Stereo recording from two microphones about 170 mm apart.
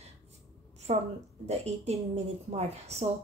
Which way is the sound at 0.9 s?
40° right (ahead or behind).